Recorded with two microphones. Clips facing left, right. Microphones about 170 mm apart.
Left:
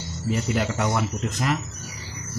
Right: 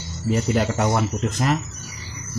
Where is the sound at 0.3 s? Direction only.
35° right (ahead or behind).